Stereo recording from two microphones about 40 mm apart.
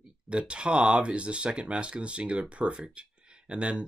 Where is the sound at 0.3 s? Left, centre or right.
Right.